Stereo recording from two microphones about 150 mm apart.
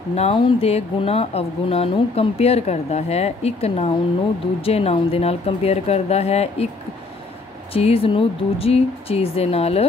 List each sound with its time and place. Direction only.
0.1 s speech: 45° left (ahead or behind)
7.7 s speech: 40° left (ahead or behind)